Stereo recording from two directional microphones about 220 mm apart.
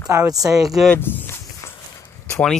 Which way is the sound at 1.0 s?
10° left (ahead or behind).